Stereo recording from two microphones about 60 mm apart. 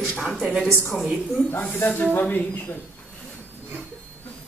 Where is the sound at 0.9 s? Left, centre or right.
Centre.